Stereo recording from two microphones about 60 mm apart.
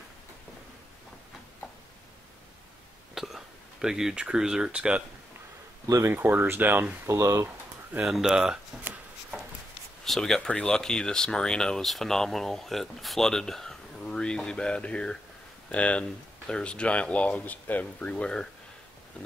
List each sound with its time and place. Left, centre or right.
3.2 s speech: centre
6.1 s speech: right
7.1 s speech: right
8.0 s speech: centre
10.0 s speech: centre